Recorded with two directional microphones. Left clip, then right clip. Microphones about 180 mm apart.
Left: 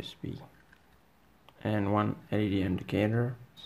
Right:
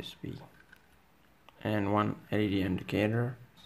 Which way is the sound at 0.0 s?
10° left (ahead or behind).